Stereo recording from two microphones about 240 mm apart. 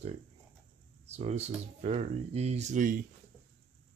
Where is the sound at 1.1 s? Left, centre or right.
Right.